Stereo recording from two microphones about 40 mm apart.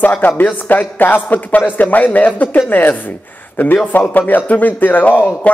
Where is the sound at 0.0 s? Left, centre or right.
Left.